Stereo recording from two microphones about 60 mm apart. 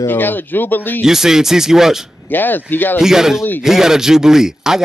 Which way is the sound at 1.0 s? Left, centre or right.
Centre.